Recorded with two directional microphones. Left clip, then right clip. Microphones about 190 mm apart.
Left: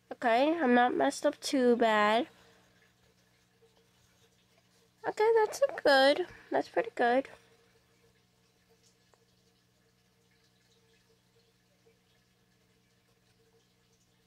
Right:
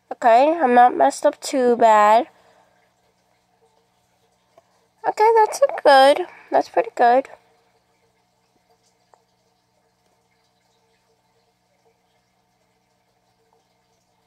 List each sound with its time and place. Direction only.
0.1 s speech: 10° left (ahead or behind)
5.0 s speech: 10° left (ahead or behind)